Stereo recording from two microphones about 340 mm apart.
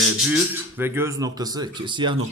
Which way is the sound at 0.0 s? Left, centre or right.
Centre.